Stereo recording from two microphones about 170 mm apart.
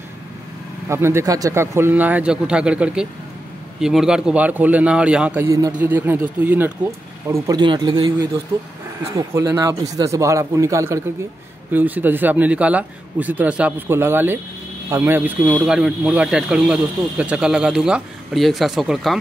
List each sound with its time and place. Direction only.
0.8 s a man's voice: 15° right (ahead or behind)